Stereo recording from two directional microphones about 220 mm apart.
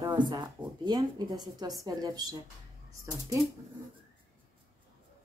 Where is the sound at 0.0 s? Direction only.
20° right (ahead or behind).